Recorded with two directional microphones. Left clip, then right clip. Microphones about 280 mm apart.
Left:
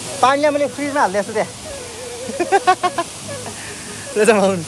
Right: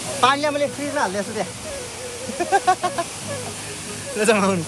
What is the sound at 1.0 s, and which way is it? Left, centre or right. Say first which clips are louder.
Speech: left 7 dB; left.